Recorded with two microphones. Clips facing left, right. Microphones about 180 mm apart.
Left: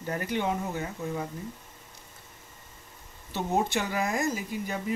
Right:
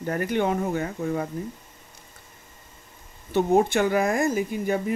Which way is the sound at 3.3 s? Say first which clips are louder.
Right 8 dB; 55° right (ahead or behind).